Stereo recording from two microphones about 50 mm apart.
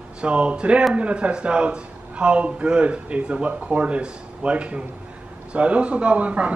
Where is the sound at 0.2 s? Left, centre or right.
Right.